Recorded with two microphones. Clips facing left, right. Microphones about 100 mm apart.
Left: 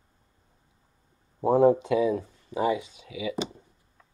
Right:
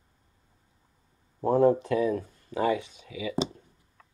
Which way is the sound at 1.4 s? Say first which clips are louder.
Left 2 dB; 10° left (ahead or behind).